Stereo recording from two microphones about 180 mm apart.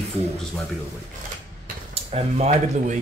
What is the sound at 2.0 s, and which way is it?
Speech, 35° right (ahead or behind).